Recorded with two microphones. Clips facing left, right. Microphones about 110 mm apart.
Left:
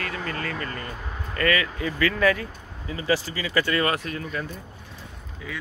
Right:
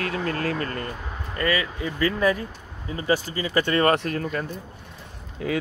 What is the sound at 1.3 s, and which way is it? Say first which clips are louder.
Speech: left 1 dB; 20° right (ahead or behind).